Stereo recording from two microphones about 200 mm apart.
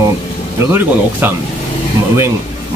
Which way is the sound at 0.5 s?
10° right (ahead or behind).